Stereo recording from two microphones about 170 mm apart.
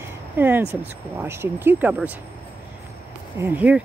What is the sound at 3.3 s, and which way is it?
Speech, 10° right (ahead or behind).